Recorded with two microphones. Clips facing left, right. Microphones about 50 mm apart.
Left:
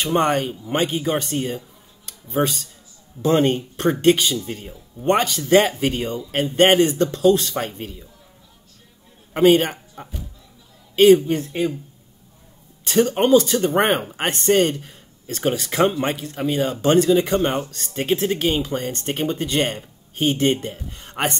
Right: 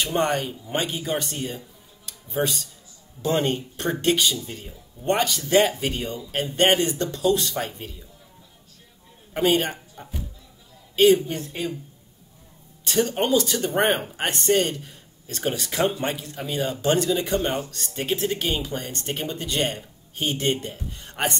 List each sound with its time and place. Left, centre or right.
0.0 s speech: left
3.2 s speech: left
9.3 s speech: left
11.0 s speech: left
12.8 s speech: left